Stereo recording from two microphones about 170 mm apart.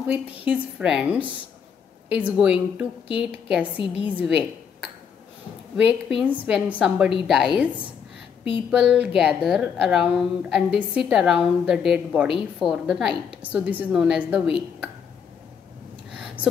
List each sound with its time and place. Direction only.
0.5 s a woman's voice: 5° right (ahead or behind)
3.7 s a woman's voice: 30° left (ahead or behind)
5.8 s a woman's voice: 5° right (ahead or behind)